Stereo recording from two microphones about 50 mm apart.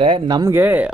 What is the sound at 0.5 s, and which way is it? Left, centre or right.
Speech, right.